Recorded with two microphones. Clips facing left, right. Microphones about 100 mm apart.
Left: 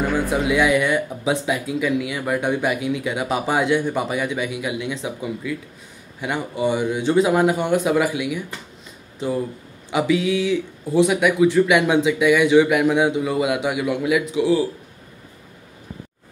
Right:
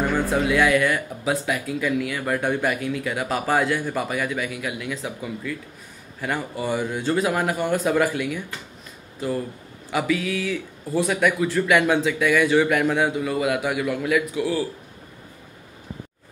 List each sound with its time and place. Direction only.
0.0 s speech: 10° left (ahead or behind)
7.9 s speech: 10° left (ahead or behind)
9.8 s speech: 20° left (ahead or behind)